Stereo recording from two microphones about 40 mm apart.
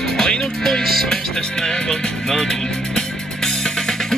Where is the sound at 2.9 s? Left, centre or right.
Centre.